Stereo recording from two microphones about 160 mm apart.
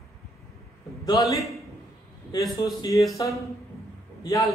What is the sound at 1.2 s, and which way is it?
Speech, 30° left (ahead or behind).